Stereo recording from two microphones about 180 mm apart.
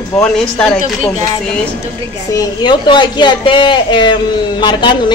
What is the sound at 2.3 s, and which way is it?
A woman's voice, 20° left (ahead or behind).